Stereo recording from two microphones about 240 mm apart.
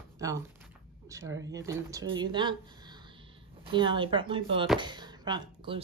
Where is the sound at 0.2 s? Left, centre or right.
Centre.